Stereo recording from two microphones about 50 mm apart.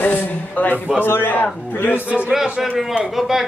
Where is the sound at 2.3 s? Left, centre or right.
Centre.